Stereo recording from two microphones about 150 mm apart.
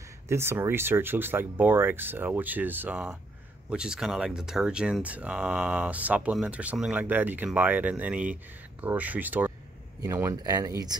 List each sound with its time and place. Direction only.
0.3 s speech: 15° right (ahead or behind)